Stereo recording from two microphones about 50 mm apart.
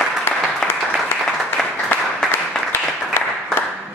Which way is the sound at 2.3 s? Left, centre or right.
Left.